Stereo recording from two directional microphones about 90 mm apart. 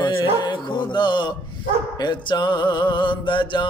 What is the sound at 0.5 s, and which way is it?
Speech, 60° left (ahead or behind).